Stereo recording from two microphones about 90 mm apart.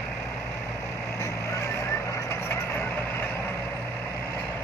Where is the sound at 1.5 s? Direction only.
35° left (ahead or behind).